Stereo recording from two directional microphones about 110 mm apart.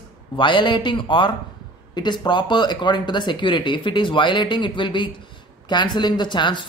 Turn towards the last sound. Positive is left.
turn(degrees=45)  # may be behind; listen again after turning